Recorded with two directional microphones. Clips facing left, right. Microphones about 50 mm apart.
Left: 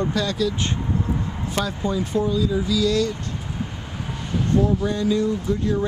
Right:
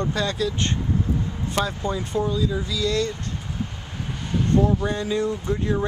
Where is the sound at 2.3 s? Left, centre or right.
Centre.